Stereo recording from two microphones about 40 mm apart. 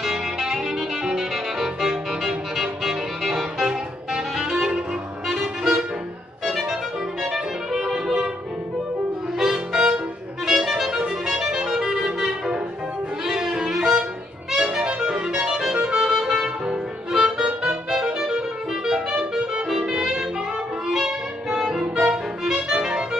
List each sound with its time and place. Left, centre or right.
0.0 s music: centre
9.4 s music: centre
10.9 s music: right
11.2 s music: centre